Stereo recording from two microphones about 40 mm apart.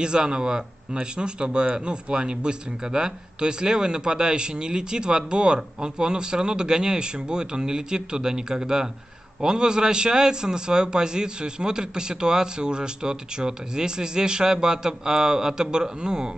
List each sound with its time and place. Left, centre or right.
0.0 s speech: right